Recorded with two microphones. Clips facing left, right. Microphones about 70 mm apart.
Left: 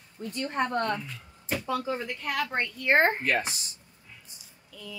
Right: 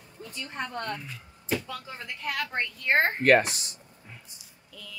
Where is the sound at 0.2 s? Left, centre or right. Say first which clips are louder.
Left 7 dB; left.